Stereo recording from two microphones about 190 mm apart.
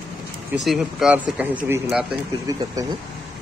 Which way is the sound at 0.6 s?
Centre (ahead or behind).